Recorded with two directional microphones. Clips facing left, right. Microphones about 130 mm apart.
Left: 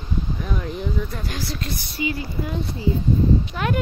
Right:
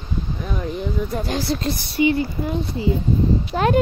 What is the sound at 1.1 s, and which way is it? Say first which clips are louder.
Speech: right 7 dB; 30° right (ahead or behind).